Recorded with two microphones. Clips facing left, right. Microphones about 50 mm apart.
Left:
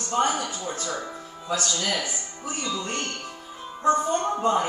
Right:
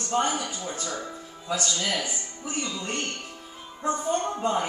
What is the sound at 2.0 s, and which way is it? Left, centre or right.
Speech, centre.